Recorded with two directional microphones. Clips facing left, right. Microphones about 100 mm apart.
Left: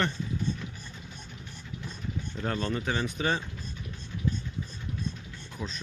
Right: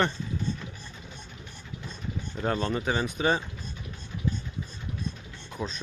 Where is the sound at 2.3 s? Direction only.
20° right (ahead or behind).